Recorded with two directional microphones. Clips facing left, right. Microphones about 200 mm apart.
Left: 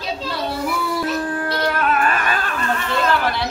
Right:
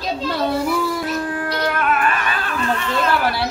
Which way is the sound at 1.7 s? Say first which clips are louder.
Even; 40° left (ahead or behind).